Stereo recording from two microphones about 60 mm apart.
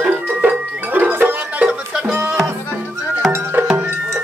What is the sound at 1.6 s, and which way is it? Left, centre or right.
Music, centre.